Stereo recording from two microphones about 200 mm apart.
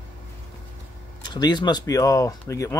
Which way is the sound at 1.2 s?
20° left (ahead or behind).